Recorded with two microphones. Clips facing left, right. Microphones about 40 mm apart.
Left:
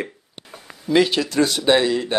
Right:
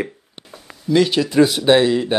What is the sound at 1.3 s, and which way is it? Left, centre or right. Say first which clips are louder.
Speech: right 4 dB; centre.